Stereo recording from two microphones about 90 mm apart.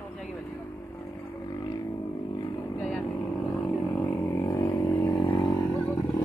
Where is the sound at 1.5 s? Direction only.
45° left (ahead or behind).